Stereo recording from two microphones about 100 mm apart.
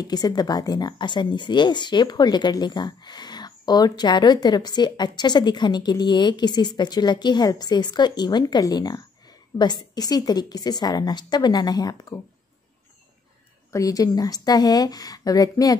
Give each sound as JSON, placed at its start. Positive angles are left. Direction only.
{"t": 0.0, "sound": "a woman's voice", "side_deg": 40}
{"t": 13.7, "sound": "a woman's voice", "side_deg": 35}